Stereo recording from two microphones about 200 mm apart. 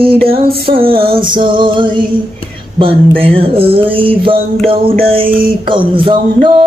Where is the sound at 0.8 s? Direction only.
25° right (ahead or behind).